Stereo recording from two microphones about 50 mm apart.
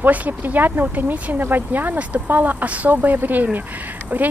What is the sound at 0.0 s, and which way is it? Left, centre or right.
Speech, right.